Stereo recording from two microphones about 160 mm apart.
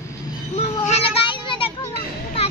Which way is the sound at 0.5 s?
40° left (ahead or behind).